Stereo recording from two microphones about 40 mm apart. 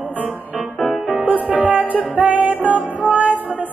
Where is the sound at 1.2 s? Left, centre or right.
Right.